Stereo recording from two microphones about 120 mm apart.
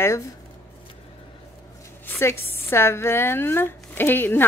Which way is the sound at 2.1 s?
20° left (ahead or behind).